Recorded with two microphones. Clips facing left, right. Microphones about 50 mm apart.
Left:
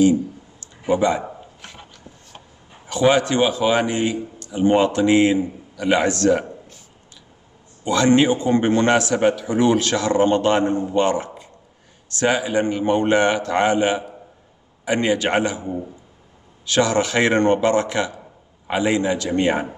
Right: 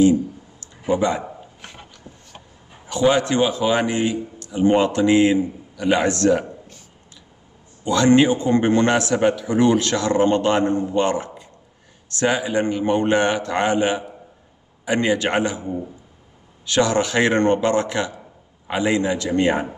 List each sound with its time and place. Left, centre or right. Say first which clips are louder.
0.8 s speech: left 1 dB; left
1.6 s dog: even; centre
2.9 s a man's voice: left 1 dB; left
6.0 s a man's voice: even; right
7.8 s a man's voice: right 1 dB; left
15.6 s a man's voice: even; centre
16.7 s speech: even; left